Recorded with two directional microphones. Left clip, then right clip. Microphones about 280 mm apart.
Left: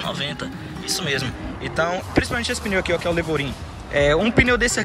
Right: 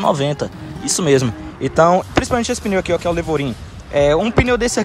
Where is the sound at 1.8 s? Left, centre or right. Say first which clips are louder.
Right 8 dB; right.